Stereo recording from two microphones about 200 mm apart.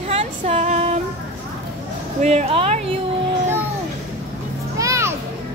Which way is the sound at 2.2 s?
35° right (ahead or behind).